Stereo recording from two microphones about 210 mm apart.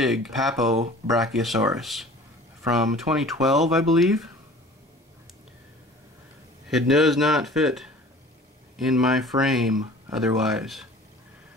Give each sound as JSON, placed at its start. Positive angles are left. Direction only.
{"t": 0.0, "sound": "speech", "side_deg": 0}
{"t": 6.7, "sound": "speech", "side_deg": 0}